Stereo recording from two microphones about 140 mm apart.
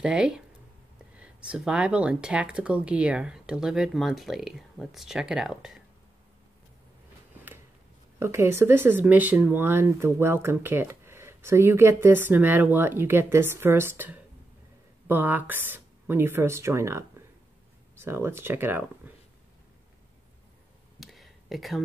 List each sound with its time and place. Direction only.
0.0 s speech: 5° right (ahead or behind)
8.2 s speech: 20° right (ahead or behind)
21.0 s a sound: centre (ahead or behind)